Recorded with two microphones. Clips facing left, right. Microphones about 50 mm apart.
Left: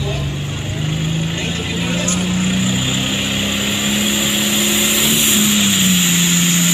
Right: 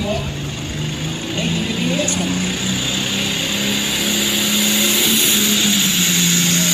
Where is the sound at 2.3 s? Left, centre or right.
Centre.